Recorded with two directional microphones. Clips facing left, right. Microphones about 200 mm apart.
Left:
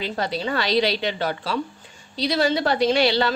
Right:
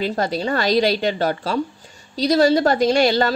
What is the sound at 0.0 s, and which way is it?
A woman's voice, 45° right (ahead or behind).